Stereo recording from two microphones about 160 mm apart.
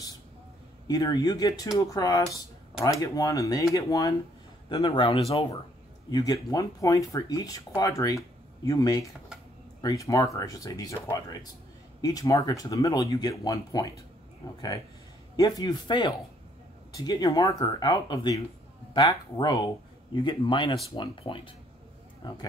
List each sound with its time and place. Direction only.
0.8 s a man's voice: 25° left (ahead or behind)